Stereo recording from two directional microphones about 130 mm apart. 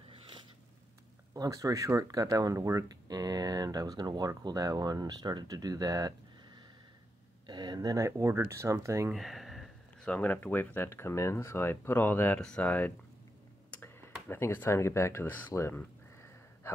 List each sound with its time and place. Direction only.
1.3 s speech: 25° right (ahead or behind)
9.1 s speech: centre (ahead or behind)
13.7 s a sound: 15° left (ahead or behind)
14.3 s speech: 15° left (ahead or behind)